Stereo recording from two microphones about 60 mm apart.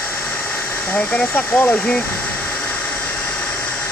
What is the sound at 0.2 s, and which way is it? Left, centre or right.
Hair dryer, left.